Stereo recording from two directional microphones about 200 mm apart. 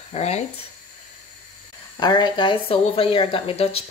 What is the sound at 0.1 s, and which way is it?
Speech, 30° left (ahead or behind).